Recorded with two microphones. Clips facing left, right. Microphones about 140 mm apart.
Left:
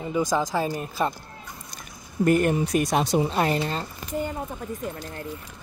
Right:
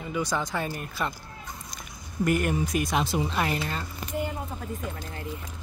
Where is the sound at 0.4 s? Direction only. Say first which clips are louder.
Left 5 dB; 40° left (ahead or behind).